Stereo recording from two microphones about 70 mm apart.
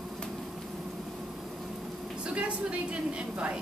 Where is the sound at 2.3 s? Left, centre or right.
Centre.